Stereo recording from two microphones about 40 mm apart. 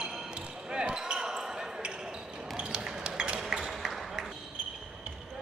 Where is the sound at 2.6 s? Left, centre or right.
Right.